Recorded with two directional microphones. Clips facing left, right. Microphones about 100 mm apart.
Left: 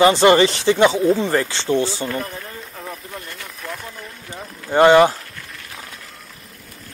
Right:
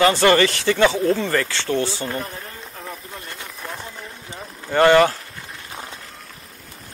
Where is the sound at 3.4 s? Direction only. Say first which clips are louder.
Left 1 dB; 25° right (ahead or behind).